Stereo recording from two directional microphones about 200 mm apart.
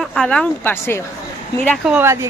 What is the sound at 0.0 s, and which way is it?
Speech, 5° left (ahead or behind).